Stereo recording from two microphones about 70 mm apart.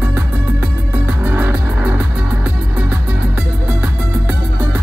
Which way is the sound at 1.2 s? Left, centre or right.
Right.